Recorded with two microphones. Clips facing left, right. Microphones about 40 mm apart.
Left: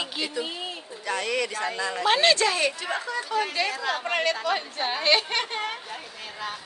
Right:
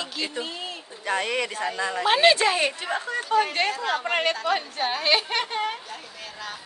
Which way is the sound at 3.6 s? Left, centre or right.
Right.